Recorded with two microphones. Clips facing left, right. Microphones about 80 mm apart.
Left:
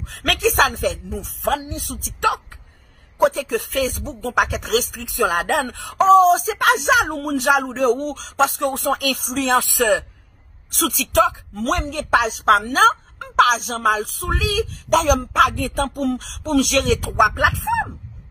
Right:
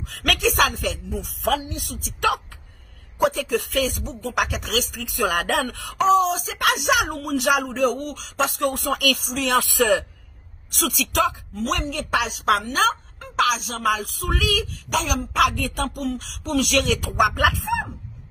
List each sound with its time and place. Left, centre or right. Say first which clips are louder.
0.1 s speech: left 3 dB; left
1.4 s speech: left 2 dB; left
3.3 s speech: left 1 dB; left
4.9 s speech: left 3 dB; left
6.0 s speech: left 6 dB; left
7.4 s speech: left 3 dB; left
9.8 s a man's voice: even; centre
10.7 s speech: left 3 dB; left
14.9 s speech: left 8 dB; left
15.4 s speech: left 2 dB; left
17.2 s speech: left 2 dB; left